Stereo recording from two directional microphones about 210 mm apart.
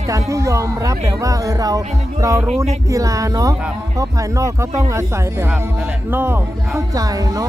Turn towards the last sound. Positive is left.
turn(degrees=-15)  # may be behind; listen again after turning